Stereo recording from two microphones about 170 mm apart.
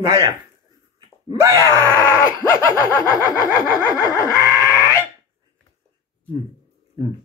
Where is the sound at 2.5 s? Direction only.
20° left (ahead or behind).